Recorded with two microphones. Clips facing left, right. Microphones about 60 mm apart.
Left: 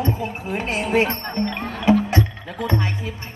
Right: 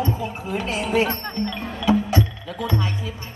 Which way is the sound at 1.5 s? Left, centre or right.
Left.